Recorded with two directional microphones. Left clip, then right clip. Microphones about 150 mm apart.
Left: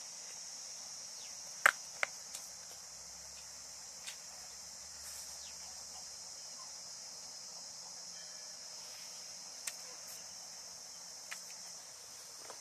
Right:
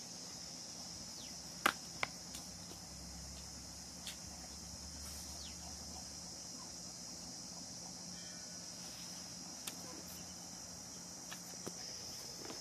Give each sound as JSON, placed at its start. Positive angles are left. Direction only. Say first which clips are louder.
{"t": 1.6, "sound": "finger snapping", "louder": "left 6 dB", "side_deg": 25}